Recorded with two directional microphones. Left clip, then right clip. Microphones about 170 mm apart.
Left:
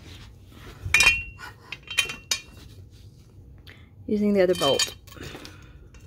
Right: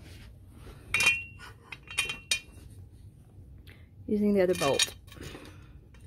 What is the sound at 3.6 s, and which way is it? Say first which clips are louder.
Cutlery: left 5 dB; 5° right (ahead or behind).